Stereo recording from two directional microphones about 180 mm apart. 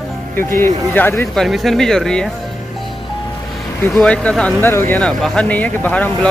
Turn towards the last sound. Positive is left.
turn(degrees=10)  # may be behind; listen again after turning